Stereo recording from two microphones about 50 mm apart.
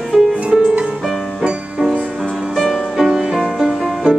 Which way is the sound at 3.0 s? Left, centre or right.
Centre.